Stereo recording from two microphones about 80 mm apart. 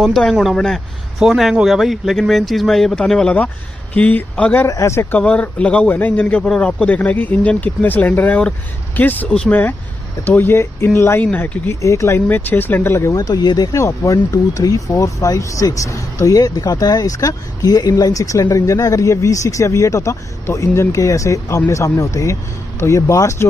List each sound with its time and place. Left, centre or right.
0.0 s speech: centre
4.6 s speech: left
5.1 s speech: centre; by 11.2 s left
11.3 s speech: left
11.7 s speech: left
12.3 s speech: left
13.1 s speech: left